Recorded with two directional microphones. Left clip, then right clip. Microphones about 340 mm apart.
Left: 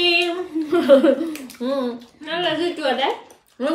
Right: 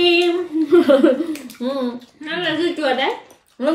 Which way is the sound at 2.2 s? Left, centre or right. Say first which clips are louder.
Right 1 dB; centre.